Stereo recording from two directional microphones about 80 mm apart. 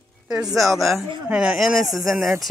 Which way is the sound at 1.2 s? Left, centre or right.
Centre.